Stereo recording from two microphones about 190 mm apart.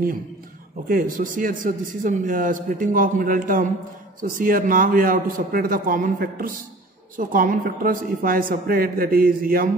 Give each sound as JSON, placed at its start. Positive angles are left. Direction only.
{"t": 0.8, "sound": "a man's voice", "side_deg": -50}